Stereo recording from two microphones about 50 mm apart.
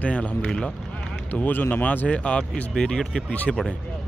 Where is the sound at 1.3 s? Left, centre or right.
Left.